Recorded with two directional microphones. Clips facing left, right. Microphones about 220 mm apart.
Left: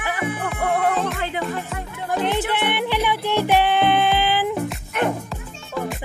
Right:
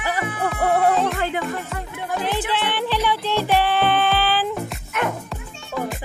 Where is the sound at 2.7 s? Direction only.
20° left (ahead or behind).